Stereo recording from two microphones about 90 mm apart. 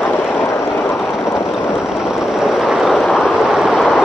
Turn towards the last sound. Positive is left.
turn(degrees=-5)  # may be behind; listen again after turning